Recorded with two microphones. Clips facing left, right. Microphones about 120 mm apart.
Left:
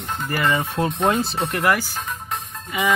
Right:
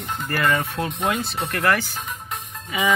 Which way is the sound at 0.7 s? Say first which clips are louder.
Left 4 dB; 30° left (ahead or behind).